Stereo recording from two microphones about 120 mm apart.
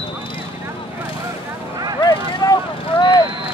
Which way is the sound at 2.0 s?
35° left (ahead or behind).